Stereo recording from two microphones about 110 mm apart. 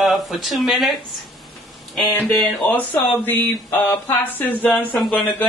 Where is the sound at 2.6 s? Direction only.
15° left (ahead or behind).